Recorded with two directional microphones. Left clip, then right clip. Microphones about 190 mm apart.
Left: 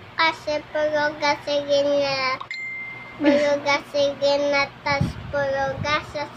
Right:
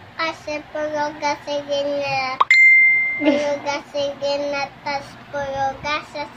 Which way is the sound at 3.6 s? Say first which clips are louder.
Left 2 dB; 25° left (ahead or behind).